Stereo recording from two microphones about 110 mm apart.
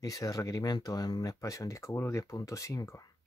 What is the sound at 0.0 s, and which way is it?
Speech, 30° left (ahead or behind).